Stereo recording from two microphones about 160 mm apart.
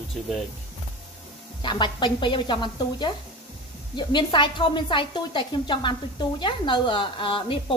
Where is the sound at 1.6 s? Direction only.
30° left (ahead or behind).